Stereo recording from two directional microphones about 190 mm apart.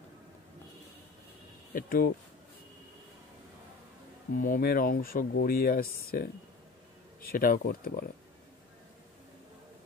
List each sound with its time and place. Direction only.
1.7 s speech: 50° left (ahead or behind)
4.4 s speech: 50° left (ahead or behind)